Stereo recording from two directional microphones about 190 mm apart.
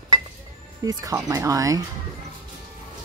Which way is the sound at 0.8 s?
15° right (ahead or behind).